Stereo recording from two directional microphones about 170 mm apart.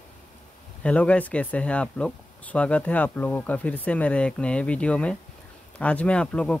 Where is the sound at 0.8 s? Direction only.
5° left (ahead or behind).